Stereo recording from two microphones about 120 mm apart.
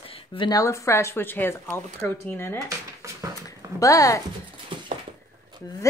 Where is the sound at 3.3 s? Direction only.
30° left (ahead or behind).